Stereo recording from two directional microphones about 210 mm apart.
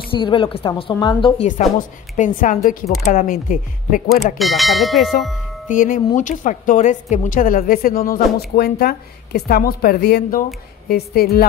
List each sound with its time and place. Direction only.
0.1 s a woman's voice: 25° left (ahead or behind)
2.1 s a woman's voice: 35° left (ahead or behind)
4.1 s speech: centre (ahead or behind)
5.7 s a woman's voice: 40° left (ahead or behind)